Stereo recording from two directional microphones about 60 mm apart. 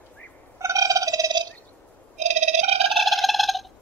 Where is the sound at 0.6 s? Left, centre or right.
Right.